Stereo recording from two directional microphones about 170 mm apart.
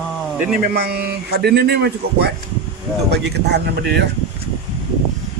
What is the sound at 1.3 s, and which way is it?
A man's voice, 70° right (ahead or behind).